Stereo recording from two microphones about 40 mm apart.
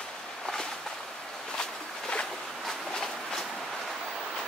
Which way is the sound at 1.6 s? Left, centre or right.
Left.